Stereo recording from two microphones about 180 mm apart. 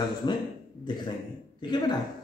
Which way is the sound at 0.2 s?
25° left (ahead or behind).